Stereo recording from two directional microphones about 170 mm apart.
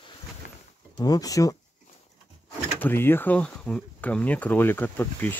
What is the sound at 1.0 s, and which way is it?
Speech, 20° left (ahead or behind).